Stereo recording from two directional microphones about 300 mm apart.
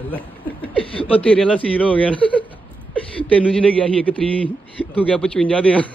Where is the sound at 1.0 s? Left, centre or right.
Centre.